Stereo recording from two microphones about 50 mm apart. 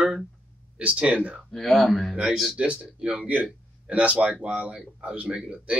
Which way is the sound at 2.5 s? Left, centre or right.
Right.